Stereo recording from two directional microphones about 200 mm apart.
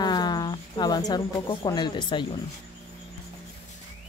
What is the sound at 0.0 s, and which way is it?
Speech, 20° left (ahead or behind).